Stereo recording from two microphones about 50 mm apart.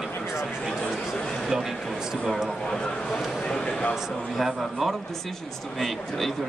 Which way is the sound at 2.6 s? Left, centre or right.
Centre.